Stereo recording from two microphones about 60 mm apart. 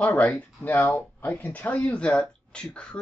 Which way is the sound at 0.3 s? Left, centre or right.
Left.